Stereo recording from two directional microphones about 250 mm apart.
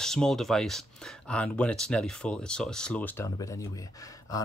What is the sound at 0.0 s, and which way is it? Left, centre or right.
Speech, centre.